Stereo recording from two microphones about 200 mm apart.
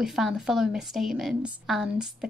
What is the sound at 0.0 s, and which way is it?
A woman's voice, centre (ahead or behind).